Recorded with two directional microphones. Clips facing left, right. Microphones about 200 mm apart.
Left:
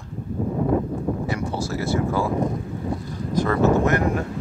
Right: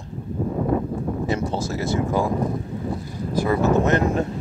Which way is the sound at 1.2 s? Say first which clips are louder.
Right 2 dB; 20° right (ahead or behind).